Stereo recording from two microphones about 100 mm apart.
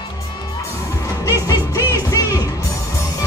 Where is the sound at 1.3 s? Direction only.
35° left (ahead or behind).